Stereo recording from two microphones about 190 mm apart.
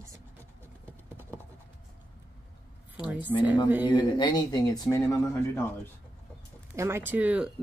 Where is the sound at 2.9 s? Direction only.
5° right (ahead or behind).